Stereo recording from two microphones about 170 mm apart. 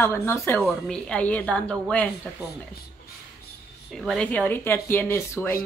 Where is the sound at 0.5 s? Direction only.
Centre (ahead or behind).